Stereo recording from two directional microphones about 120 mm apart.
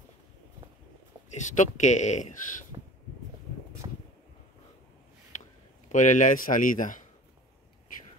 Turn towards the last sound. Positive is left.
turn(degrees=90)